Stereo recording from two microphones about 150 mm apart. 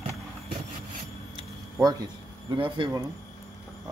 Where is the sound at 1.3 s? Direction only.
25° right (ahead or behind).